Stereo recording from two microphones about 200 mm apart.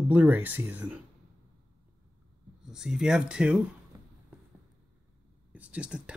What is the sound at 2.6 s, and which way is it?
Speech, 5° right (ahead or behind).